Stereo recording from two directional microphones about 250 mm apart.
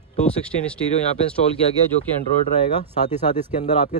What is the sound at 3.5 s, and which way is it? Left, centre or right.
Speech, left.